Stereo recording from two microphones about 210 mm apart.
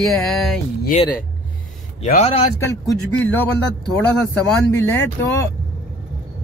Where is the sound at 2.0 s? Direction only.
30° left (ahead or behind).